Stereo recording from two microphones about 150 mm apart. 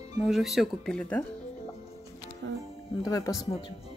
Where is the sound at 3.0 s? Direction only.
20° left (ahead or behind).